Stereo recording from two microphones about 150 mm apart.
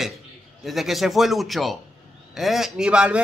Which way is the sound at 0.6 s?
Centre (ahead or behind).